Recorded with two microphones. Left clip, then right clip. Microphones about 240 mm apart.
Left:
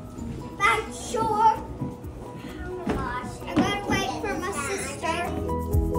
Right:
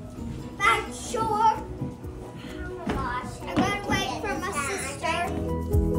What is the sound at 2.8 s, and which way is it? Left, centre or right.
Children playing, centre.